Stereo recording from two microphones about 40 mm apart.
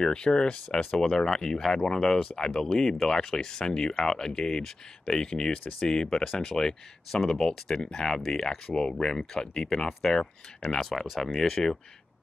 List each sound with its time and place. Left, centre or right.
0.0 s speech: centre
8.6 s speech: centre
10.8 s speech: centre
11.6 s speech: centre